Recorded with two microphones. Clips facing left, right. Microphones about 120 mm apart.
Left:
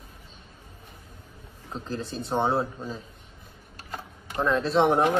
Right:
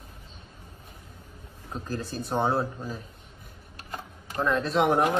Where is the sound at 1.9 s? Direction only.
25° left (ahead or behind).